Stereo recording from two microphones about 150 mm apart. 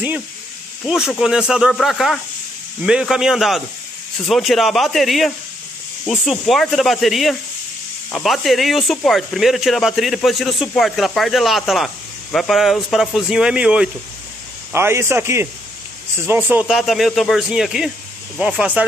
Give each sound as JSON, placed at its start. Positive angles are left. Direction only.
{"t": 0.8, "sound": "speech", "side_deg": -5}
{"t": 14.7, "sound": "a man's voice", "side_deg": -15}
{"t": 16.6, "sound": "a man's voice", "side_deg": 0}